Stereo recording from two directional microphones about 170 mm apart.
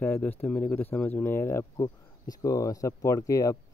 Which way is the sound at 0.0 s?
10° left (ahead or behind).